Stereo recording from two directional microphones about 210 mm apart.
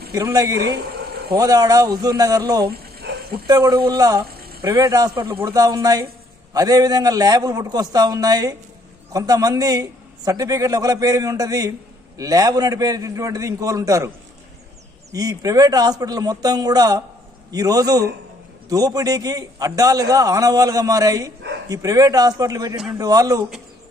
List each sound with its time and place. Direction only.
0.1 s a man's voice: 15° right (ahead or behind)
2.7 s dog: 45° right (ahead or behind)
3.4 s speech: 20° right (ahead or behind)
4.3 s a sound: 45° right (ahead or behind)
4.6 s a man's voice: 15° right (ahead or behind)
15.1 s a man's voice: 15° right (ahead or behind)